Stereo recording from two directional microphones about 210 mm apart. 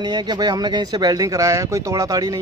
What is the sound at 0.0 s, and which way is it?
Speech, 20° right (ahead or behind).